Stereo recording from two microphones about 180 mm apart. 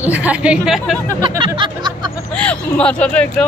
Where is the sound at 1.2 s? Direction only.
25° right (ahead or behind).